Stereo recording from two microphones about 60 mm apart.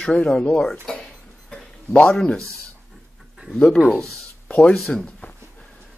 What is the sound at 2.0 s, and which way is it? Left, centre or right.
Speech, centre.